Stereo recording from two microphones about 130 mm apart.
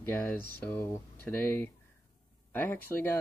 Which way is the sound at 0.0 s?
10° left (ahead or behind).